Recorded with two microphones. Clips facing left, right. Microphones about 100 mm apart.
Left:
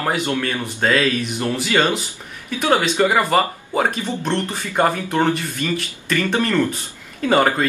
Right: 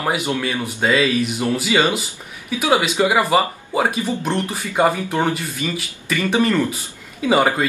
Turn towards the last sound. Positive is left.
turn(degrees=-5)  # may be behind; listen again after turning